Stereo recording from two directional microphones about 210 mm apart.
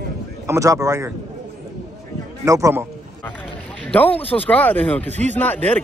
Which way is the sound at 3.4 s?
5° left (ahead or behind).